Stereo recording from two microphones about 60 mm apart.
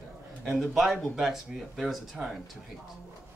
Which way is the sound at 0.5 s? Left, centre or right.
Centre.